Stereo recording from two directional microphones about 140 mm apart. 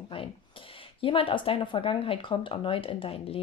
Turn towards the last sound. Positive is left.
turn(degrees=45)  # may be behind; listen again after turning